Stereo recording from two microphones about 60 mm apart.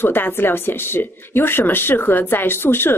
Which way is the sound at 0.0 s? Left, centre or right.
Left.